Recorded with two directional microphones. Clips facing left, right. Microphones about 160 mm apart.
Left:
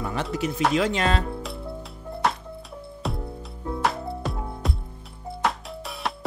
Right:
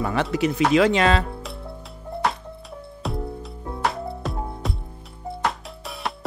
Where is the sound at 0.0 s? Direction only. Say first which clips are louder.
Right 5 dB; 75° right (ahead or behind).